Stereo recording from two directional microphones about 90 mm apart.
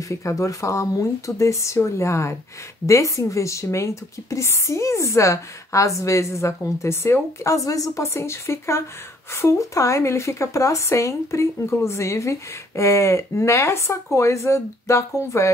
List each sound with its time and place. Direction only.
0.1 s a woman's voice: 35° left (ahead or behind)